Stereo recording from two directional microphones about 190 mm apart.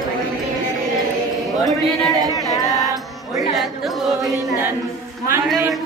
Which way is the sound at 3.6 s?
Centre (ahead or behind).